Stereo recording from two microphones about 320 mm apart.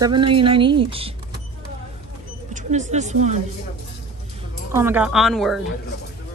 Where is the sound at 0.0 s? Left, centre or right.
Centre.